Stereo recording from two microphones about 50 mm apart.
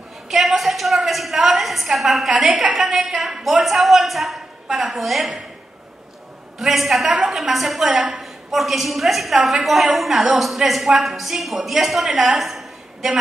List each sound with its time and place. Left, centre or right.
0.3 s a woman's voice: centre
2.3 s a woman's voice: centre
6.6 s a woman's voice: centre
7.9 s a woman's voice: right
8.2 s a woman's voice: centre
12.4 s a sound: centre